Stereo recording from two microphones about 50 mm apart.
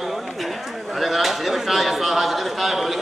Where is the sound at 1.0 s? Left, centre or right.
Centre.